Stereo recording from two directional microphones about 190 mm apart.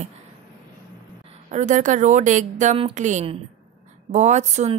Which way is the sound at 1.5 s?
40° right (ahead or behind).